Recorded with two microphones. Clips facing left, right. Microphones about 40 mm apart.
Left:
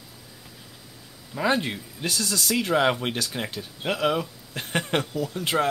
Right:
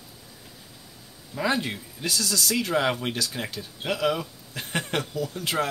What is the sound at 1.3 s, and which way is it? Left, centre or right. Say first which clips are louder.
Speech: left 2 dB; centre.